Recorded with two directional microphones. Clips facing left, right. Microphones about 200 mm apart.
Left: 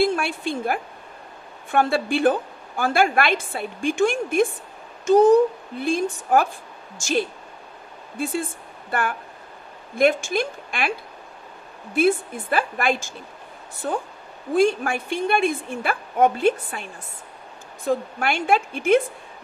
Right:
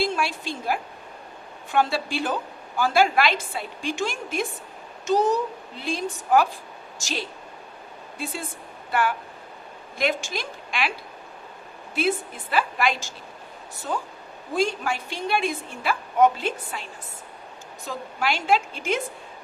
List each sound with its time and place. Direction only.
0.0 s a woman's voice: 55° left (ahead or behind)
9.9 s a woman's voice: 50° left (ahead or behind)
11.9 s a woman's voice: 50° left (ahead or behind)